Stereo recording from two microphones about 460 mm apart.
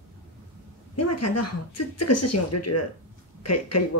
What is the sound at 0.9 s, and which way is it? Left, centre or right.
Speech, left.